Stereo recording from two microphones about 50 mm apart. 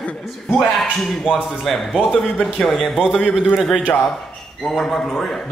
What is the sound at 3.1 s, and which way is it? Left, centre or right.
Speech, centre.